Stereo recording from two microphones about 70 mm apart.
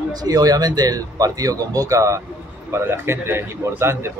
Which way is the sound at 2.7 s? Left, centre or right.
Right.